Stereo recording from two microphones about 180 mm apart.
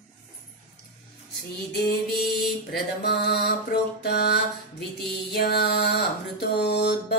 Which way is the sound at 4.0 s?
65° left (ahead or behind).